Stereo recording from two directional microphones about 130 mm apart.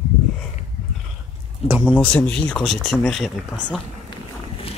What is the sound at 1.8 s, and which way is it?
Speech, 10° left (ahead or behind).